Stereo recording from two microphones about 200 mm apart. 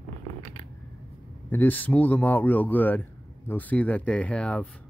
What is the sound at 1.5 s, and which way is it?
Speech, 10° left (ahead or behind).